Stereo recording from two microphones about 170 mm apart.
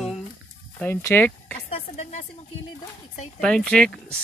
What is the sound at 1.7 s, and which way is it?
Music, 40° left (ahead or behind).